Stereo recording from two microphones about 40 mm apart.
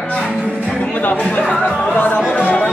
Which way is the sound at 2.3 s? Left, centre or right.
Left.